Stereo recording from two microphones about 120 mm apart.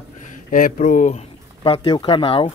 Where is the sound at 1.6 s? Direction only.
55° left (ahead or behind).